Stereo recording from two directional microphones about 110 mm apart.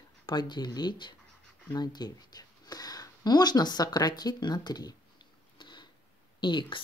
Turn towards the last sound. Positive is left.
turn(degrees=45)  # may be behind; listen again after turning